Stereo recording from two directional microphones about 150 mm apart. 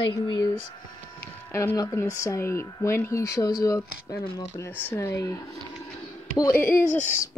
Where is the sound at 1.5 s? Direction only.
20° left (ahead or behind).